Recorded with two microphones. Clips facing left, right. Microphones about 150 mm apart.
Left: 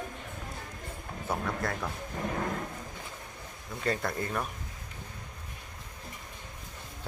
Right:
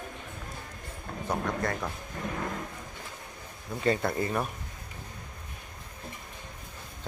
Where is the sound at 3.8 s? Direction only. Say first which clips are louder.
Right 4 dB; 5° right (ahead or behind).